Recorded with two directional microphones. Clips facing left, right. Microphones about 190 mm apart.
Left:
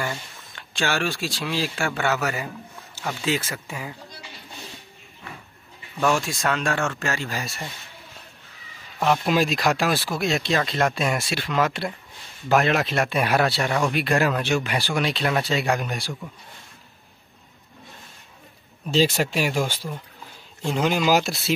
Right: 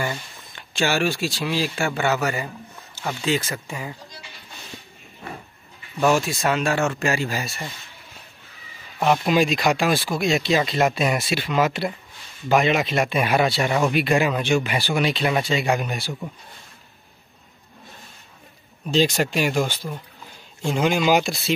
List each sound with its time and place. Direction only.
0.0 s speech: 5° right (ahead or behind)
5.2 s livestock: 40° right (ahead or behind)
5.9 s speech: 5° right (ahead or behind)
9.0 s speech: 5° right (ahead or behind)
18.9 s speech: 5° left (ahead or behind)